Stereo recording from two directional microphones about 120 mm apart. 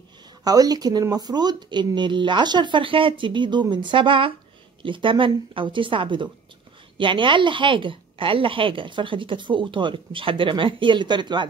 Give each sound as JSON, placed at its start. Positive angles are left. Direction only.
{"t": 0.4, "sound": "a woman's voice", "side_deg": -30}